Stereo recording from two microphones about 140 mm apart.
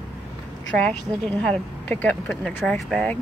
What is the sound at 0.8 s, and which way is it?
Speech, 10° left (ahead or behind).